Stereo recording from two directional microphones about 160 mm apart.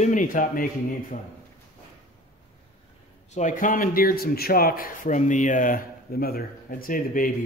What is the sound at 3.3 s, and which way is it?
A man's voice, 50° left (ahead or behind).